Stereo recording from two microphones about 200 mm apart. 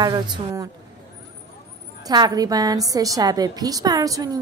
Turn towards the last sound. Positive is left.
turn(degrees=-20)  # may be behind; listen again after turning